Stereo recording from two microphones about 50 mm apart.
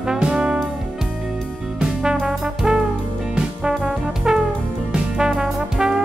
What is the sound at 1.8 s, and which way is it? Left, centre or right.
Music, centre.